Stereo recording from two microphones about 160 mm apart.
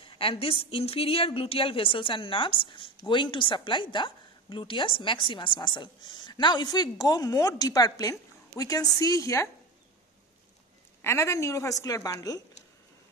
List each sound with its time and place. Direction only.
0.0 s a woman's voice: 35° left (ahead or behind)
11.0 s a woman's voice: 15° left (ahead or behind)